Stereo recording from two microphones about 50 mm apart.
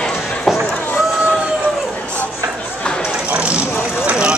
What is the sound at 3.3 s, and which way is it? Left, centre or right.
Vehicle, right.